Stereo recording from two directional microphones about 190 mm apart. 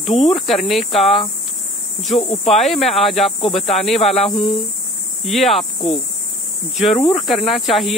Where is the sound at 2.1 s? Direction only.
35° left (ahead or behind).